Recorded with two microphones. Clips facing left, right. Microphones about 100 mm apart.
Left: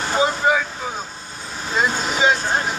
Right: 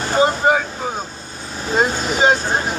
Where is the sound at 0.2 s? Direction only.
45° right (ahead or behind).